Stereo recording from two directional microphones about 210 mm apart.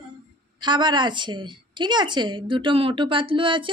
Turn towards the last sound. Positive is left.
turn(degrees=-25)  # may be behind; listen again after turning